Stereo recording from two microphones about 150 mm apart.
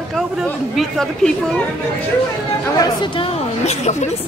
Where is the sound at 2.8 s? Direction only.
30° left (ahead or behind).